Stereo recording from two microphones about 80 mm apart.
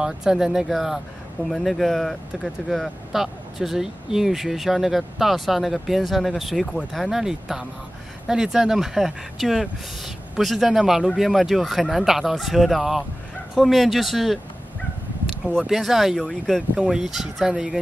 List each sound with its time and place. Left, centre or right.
0.0 s speech: centre